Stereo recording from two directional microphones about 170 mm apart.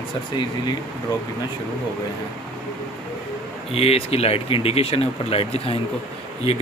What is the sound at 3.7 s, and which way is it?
Speech, 35° left (ahead or behind).